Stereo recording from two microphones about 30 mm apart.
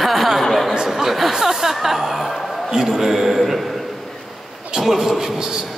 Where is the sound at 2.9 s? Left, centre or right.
Centre.